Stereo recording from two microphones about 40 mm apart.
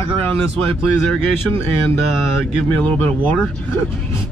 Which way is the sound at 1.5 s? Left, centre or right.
Left.